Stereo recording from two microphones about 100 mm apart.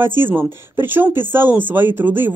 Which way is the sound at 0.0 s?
20° right (ahead or behind).